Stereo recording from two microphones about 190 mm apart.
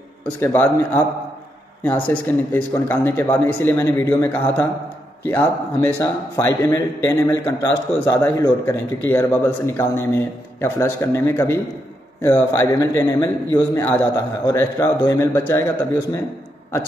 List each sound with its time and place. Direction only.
0.4 s speech: 10° left (ahead or behind)
2.0 s speech: 10° left (ahead or behind)